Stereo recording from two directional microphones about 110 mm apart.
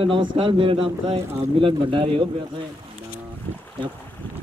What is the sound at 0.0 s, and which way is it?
Speech, 50° right (ahead or behind).